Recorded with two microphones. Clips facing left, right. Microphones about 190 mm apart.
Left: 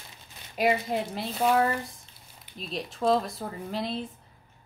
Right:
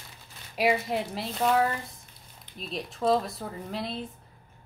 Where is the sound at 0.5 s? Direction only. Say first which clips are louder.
Even; centre (ahead or behind).